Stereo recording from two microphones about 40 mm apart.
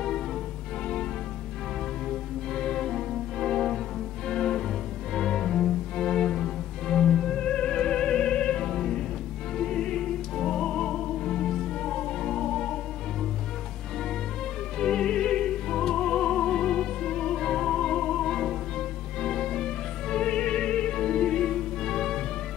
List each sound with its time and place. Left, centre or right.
2.0 s music: centre
14.8 s music: centre